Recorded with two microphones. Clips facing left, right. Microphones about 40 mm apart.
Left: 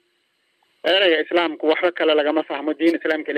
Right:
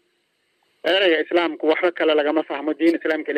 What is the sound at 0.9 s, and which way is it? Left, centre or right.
A man's voice, left.